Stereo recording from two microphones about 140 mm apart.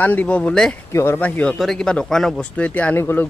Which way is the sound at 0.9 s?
15° left (ahead or behind).